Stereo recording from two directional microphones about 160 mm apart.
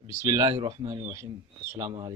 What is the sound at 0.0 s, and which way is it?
Speech, 20° right (ahead or behind).